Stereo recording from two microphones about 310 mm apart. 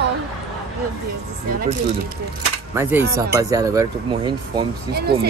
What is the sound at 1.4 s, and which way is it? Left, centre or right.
Speech, right.